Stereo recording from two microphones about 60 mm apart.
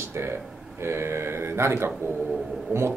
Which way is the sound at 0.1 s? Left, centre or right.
Right.